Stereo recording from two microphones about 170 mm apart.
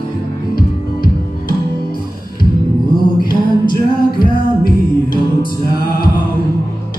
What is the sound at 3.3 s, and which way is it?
Music, 60° left (ahead or behind).